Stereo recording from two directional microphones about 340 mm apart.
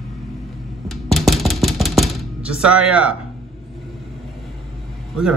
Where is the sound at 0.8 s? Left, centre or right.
Centre.